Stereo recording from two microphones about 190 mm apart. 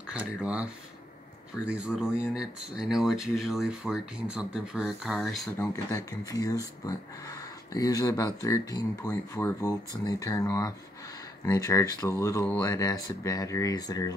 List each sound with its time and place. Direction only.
0.1 s speech: 5° right (ahead or behind)
1.7 s speech: 5° right (ahead or behind)
5.6 s speech: 15° left (ahead or behind)